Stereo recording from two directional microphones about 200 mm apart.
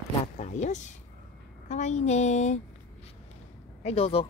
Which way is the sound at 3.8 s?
30° left (ahead or behind).